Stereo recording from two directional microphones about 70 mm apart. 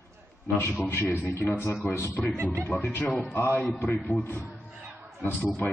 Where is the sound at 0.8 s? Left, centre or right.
Left.